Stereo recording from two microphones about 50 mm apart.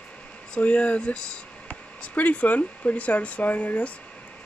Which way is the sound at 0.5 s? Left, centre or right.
Left.